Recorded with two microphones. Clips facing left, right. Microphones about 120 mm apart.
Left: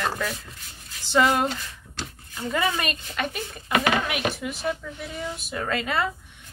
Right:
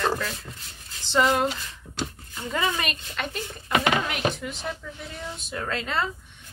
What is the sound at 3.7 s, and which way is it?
Speech, 25° right (ahead or behind).